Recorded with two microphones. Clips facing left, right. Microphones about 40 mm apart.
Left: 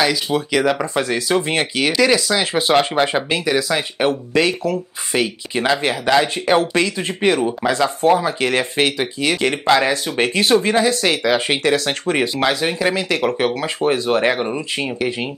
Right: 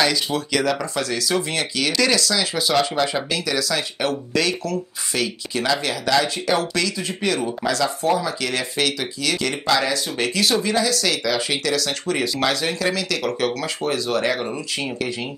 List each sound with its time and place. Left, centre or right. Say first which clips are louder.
0.0 s speech: left 3 dB; centre; by 1.9 s left
1.9 s speech: left 4 dB; centre; by 12.3 s left
12.4 s speech: left 3 dB; centre